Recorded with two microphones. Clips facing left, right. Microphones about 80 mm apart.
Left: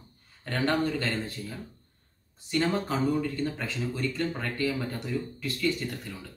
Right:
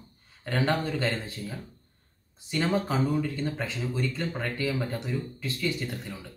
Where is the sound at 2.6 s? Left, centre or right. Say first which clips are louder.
Right 1 dB; centre.